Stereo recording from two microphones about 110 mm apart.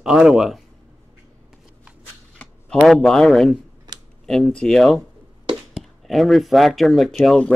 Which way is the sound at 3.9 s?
35° right (ahead or behind).